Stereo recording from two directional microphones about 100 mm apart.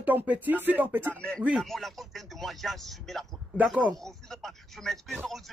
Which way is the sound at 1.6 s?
Centre (ahead or behind).